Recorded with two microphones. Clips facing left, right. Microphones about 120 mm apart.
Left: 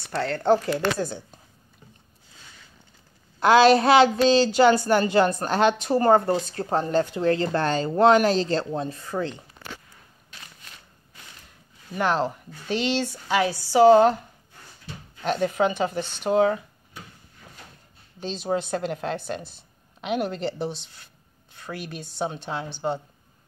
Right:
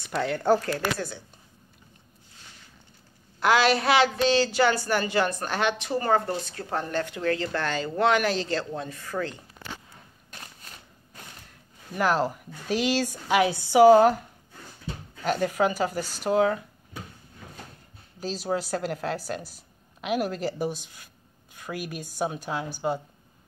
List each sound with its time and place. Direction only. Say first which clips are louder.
0.1 s speech: left 1 dB; 10° right (ahead or behind)
0.7 s a woman's voice: left 4 dB; 20° left (ahead or behind)
3.3 s a woman's voice: left 6 dB; 25° left (ahead or behind)
11.9 s speech: even; 5° right (ahead or behind)
15.2 s a woman's voice: left 1 dB; 5° right (ahead or behind)
18.2 s a woman's voice: left 2 dB; 5° right (ahead or behind)